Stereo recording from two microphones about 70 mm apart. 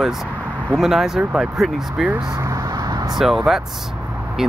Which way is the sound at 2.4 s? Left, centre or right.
Right.